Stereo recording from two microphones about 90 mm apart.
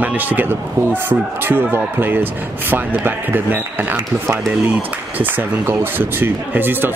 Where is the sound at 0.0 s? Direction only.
20° right (ahead or behind).